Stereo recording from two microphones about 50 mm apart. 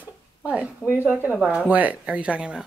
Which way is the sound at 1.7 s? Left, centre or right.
Right.